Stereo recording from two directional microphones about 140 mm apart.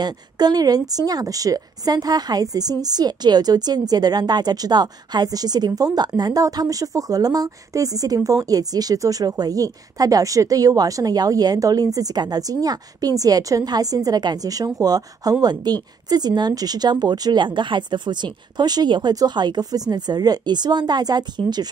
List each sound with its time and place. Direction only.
0.0 s a woman's voice: 30° right (ahead or behind)